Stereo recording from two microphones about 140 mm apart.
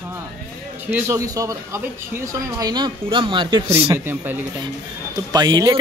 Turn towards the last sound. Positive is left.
turn(degrees=-30)  # may be behind; listen again after turning